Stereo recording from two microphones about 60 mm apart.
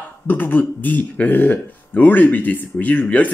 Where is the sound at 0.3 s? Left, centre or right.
Left.